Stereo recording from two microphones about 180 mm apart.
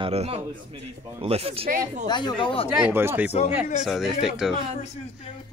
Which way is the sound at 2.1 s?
25° left (ahead or behind).